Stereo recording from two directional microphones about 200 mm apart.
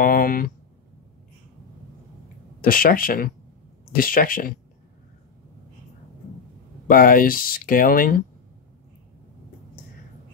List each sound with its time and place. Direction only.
0.0 s speech: 45° left (ahead or behind)
2.6 s speech: 45° left (ahead or behind)
6.9 s speech: 45° left (ahead or behind)